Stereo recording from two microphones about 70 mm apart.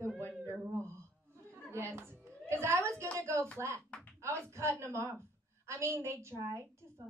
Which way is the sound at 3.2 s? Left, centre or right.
Right.